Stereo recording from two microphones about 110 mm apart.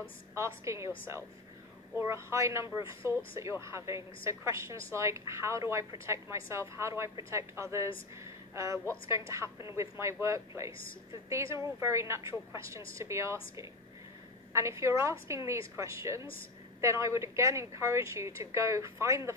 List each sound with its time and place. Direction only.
0.3 s a woman's voice: 25° right (ahead or behind)